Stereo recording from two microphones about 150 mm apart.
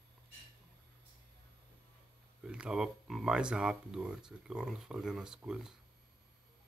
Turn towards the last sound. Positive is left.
turn(degrees=-5)  # may be behind; listen again after turning